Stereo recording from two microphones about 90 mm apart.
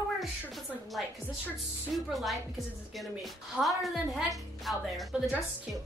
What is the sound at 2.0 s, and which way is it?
A woman's voice, centre (ahead or behind).